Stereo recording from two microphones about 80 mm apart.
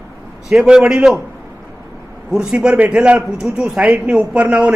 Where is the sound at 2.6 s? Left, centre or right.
Centre.